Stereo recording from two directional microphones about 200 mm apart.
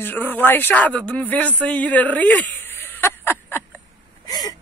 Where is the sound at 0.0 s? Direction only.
10° left (ahead or behind).